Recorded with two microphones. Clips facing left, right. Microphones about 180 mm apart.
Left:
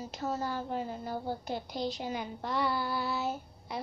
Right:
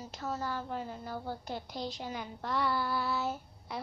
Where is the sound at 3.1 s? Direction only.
5° left (ahead or behind).